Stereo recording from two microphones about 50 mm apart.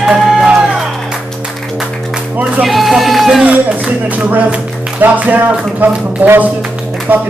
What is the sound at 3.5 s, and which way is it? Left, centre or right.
Speech, right.